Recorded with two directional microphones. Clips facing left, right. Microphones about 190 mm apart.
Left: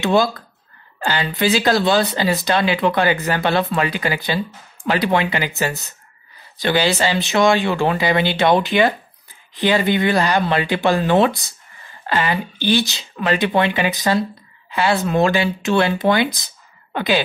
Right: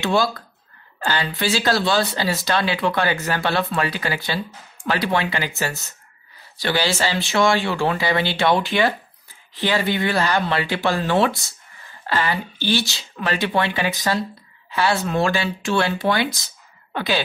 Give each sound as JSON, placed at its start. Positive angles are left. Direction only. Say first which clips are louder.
{"t": 0.0, "sound": "speech", "louder": "left 3 dB", "side_deg": 20}